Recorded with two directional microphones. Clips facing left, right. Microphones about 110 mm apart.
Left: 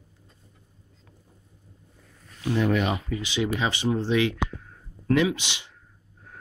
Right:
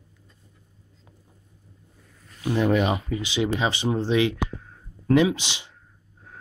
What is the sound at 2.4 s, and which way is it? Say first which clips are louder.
Speech: right 2 dB; 15° right (ahead or behind).